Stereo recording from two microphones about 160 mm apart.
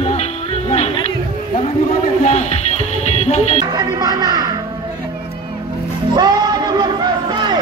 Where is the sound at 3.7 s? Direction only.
25° right (ahead or behind).